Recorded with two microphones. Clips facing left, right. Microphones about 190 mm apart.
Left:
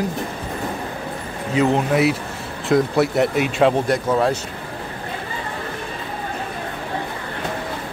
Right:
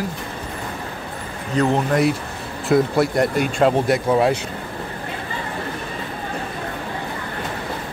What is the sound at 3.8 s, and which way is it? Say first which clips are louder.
Speech: right 1 dB; 10° right (ahead or behind).